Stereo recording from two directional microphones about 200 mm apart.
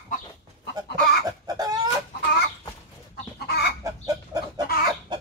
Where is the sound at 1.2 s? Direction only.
20° right (ahead or behind).